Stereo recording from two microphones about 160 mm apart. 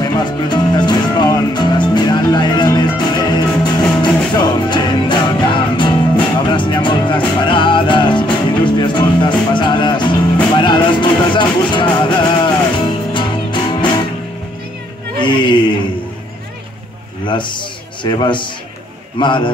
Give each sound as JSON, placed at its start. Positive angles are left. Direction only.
{"t": 0.0, "sound": "music", "side_deg": 25}
{"t": 15.1, "sound": "music", "side_deg": 30}
{"t": 17.3, "sound": "a sound", "side_deg": 30}
{"t": 19.1, "sound": "a man's voice", "side_deg": 30}